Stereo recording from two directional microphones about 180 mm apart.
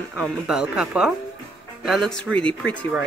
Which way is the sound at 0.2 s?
5° right (ahead or behind).